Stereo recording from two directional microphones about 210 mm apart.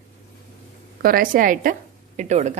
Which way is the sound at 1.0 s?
40° right (ahead or behind).